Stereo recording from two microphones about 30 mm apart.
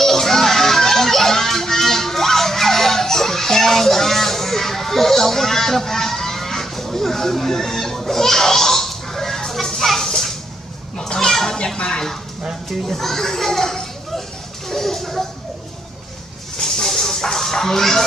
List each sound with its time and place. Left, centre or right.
0.0 s music: centre
9.5 s children playing: centre
11.0 s a sound: left
11.5 s a child's voice: left
12.8 s a child's voice: centre
14.7 s a sound: centre
16.6 s music: centre